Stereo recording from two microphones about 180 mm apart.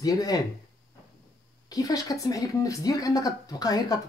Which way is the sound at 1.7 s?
20° left (ahead or behind).